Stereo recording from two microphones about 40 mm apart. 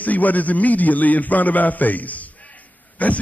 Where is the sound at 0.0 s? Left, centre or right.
Left.